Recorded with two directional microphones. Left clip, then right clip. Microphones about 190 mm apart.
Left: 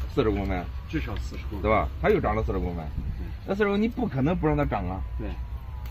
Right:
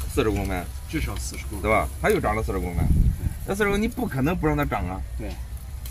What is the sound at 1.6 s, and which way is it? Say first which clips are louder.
Speech: right 2 dB; 5° right (ahead or behind).